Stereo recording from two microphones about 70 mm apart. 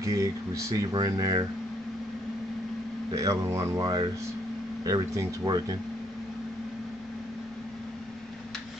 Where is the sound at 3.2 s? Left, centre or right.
Right.